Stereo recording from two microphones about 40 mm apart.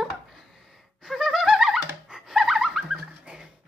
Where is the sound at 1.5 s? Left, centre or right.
Centre.